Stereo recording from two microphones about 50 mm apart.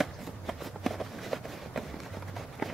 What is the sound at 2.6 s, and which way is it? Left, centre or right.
Run, centre.